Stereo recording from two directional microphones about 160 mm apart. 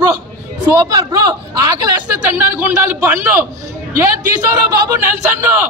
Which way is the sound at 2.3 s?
10° right (ahead or behind).